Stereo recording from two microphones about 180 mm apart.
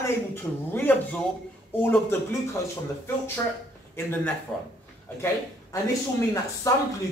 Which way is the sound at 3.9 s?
10° left (ahead or behind).